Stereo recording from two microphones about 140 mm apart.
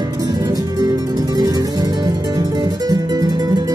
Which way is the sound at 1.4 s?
25° right (ahead or behind).